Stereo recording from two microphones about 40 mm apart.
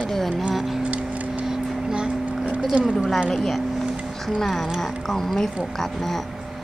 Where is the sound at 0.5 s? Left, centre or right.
Centre.